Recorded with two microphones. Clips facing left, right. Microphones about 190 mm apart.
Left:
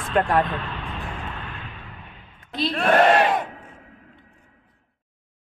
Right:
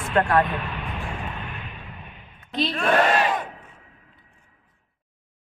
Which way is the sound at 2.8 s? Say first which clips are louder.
Left 4 dB; 60° left (ahead or behind).